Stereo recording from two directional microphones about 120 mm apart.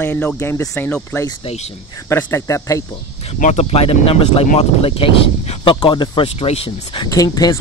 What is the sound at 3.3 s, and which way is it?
Speech, 70° left (ahead or behind).